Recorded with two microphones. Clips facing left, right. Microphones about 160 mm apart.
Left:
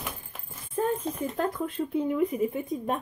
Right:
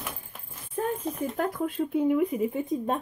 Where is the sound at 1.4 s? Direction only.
15° right (ahead or behind).